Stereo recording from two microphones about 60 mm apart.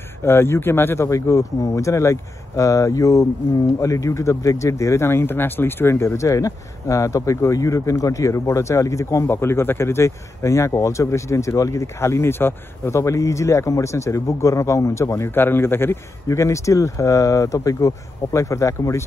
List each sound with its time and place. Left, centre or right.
0.2 s speech: left
1.1 s speech: left
9.3 s speech: left
11.7 s speech: left
16.3 s speech: left